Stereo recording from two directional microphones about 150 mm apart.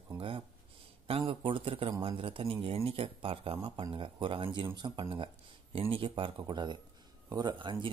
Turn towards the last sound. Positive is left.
turn(degrees=-30)  # may be behind; listen again after turning